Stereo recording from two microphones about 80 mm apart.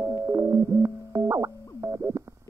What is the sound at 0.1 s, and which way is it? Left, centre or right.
Music, right.